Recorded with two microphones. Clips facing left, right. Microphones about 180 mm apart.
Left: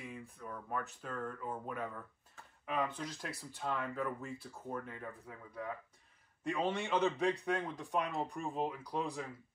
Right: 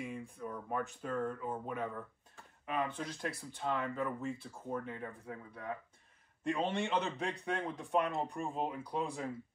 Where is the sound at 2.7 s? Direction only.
55° right (ahead or behind).